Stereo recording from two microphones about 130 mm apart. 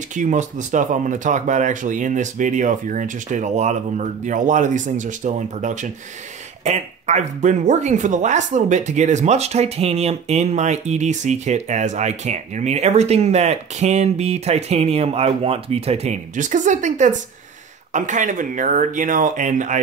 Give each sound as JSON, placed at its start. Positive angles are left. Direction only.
{"t": 0.1, "sound": "speech", "side_deg": -70}